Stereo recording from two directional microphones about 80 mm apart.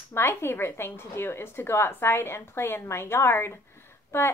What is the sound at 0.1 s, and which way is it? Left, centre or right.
A woman's voice, left.